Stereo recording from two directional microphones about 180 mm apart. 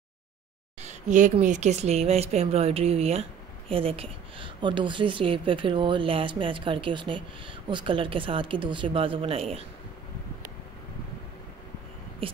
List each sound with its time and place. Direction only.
0.8 s speech: 45° right (ahead or behind)
12.2 s speech: 30° right (ahead or behind)